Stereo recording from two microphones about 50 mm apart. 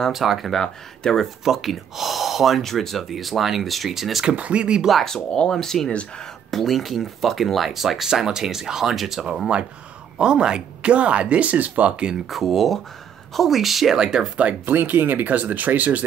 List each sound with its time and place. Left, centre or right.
0.1 s speech: centre
0.5 s speech: centre
1.4 s speech: centre
4.4 s speech: right
5.0 s speech: centre; by 11.9 s right
12.3 s speech: centre
13.9 s speech: centre
14.7 s speech: right